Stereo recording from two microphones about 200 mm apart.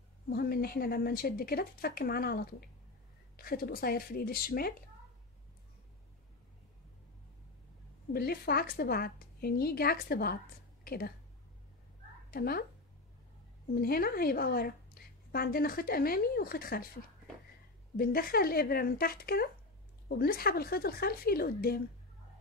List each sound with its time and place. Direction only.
0.3 s a woman's voice: 50° left (ahead or behind)
8.1 s a woman's voice: 50° left (ahead or behind)
12.3 s speech: 50° left (ahead or behind)
13.7 s a woman's voice: 50° left (ahead or behind)
17.9 s a woman's voice: 50° left (ahead or behind)